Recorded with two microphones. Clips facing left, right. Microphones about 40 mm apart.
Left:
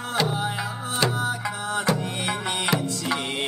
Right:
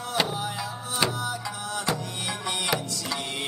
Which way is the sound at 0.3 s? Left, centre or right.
Left.